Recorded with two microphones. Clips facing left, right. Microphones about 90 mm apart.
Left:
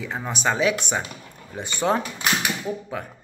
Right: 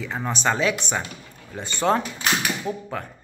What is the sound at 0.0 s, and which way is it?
Speech, 10° left (ahead or behind).